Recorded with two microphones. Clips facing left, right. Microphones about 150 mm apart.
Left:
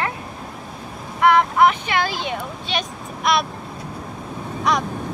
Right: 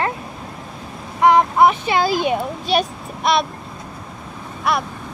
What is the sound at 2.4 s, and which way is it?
Speech, 40° right (ahead or behind).